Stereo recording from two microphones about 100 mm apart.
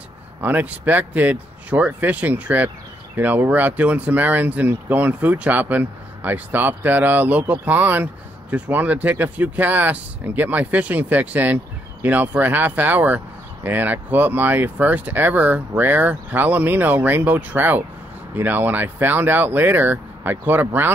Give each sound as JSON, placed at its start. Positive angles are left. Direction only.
{"t": 0.4, "sound": "speech", "side_deg": -15}